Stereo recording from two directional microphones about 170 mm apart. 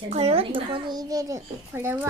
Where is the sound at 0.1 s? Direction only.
35° right (ahead or behind).